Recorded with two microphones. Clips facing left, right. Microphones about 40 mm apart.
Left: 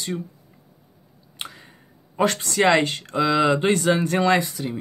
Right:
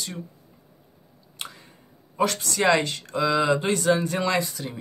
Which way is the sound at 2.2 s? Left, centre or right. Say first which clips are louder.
Left 3 dB; left.